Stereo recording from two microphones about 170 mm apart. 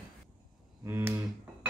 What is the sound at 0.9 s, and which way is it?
Speech, 15° right (ahead or behind).